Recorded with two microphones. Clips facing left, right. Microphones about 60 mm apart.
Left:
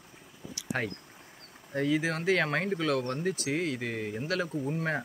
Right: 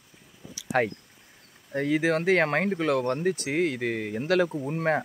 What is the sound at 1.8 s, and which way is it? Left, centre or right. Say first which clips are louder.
Speech: right 4 dB; right.